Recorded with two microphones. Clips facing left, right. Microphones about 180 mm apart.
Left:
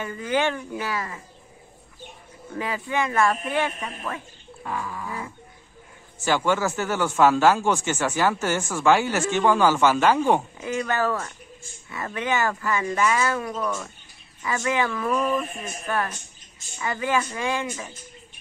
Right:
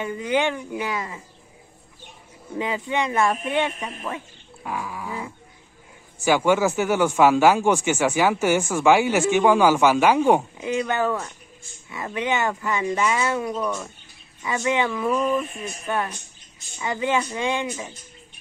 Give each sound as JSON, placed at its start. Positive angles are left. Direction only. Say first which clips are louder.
{"t": 0.0, "sound": "speech", "louder": "right 2 dB", "side_deg": -15}
{"t": 2.5, "sound": "speech", "louder": "right 2 dB", "side_deg": -20}
{"t": 4.6, "sound": "a sound", "louder": "right 1 dB", "side_deg": -10}
{"t": 6.1, "sound": "speech", "louder": "right 4 dB", "side_deg": -15}